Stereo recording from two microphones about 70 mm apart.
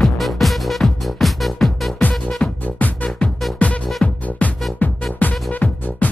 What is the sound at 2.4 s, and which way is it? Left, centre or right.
Music, centre.